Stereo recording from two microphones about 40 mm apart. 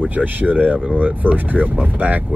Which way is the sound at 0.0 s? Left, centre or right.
Right.